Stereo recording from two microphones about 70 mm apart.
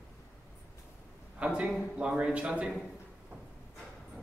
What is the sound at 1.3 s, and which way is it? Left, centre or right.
Speech, centre.